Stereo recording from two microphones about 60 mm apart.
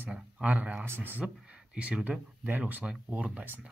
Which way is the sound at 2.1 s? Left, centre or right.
Centre.